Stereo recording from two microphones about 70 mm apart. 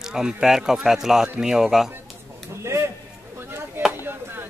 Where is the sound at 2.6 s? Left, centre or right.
Right.